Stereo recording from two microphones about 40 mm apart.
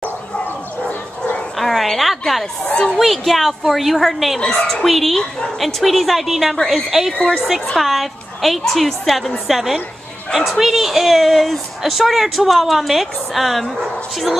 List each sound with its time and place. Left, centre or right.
1.6 s a woman's voice: centre
4.4 s speech: left
4.8 s a woman's voice: centre